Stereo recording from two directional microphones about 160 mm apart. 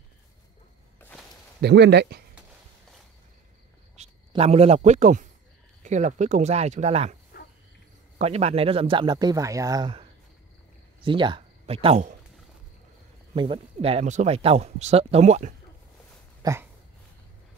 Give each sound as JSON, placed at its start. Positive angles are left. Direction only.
{"t": 1.6, "sound": "speech", "side_deg": -90}
{"t": 4.0, "sound": "cricket", "side_deg": -45}
{"t": 4.3, "sound": "speech", "side_deg": -40}
{"t": 8.2, "sound": "speech", "side_deg": -40}
{"t": 11.0, "sound": "speech", "side_deg": -30}
{"t": 13.3, "sound": "speech", "side_deg": -35}
{"t": 16.4, "sound": "a sound", "side_deg": -20}